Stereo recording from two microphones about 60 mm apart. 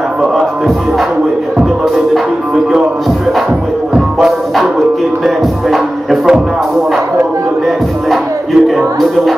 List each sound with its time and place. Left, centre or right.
0.2 s music: centre
3.9 s music: centre
8.6 s music: centre